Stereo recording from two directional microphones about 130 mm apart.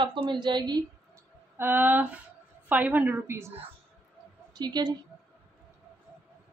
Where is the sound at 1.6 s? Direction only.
15° right (ahead or behind).